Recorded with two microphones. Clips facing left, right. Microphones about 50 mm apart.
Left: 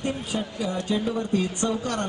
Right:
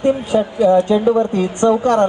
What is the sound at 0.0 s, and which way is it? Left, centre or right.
Speech, right.